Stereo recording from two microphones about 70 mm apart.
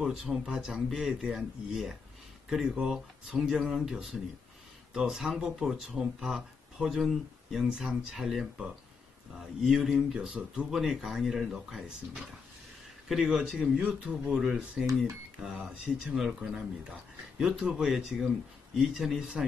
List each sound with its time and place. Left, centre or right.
0.0 s speech: centre
9.6 s speech: centre